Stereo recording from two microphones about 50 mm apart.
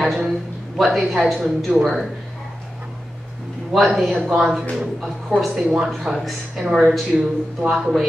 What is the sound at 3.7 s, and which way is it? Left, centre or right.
A woman's voice, centre.